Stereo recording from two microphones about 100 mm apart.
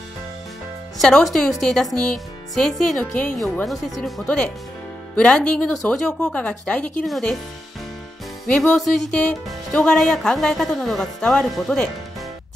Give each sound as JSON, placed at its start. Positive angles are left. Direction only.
{"t": 0.9, "sound": "speech", "side_deg": 5}
{"t": 3.6, "sound": "speech", "side_deg": 0}
{"t": 5.1, "sound": "speech", "side_deg": 10}
{"t": 8.5, "sound": "speech", "side_deg": 5}